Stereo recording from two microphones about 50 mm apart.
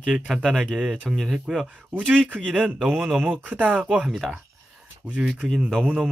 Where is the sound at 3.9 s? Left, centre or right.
Centre.